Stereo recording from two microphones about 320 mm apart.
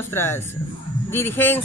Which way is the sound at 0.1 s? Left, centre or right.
Centre.